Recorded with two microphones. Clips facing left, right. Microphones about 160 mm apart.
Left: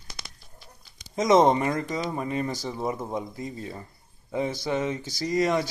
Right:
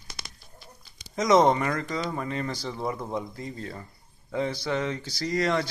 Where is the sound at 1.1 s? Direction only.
25° left (ahead or behind).